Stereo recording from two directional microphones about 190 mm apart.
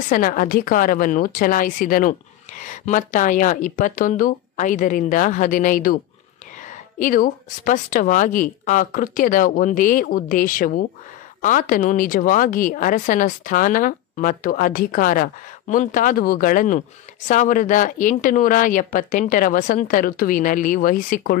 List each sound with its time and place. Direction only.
0.1 s speech: 50° left (ahead or behind)
7.0 s speech: 45° left (ahead or behind)